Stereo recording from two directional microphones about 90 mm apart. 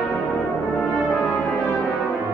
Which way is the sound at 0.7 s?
5° left (ahead or behind).